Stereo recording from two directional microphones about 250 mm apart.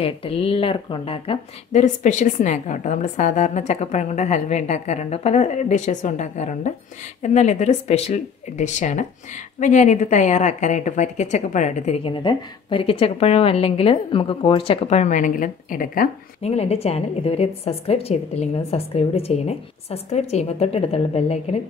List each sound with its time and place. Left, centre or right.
0.0 s a woman's voice: left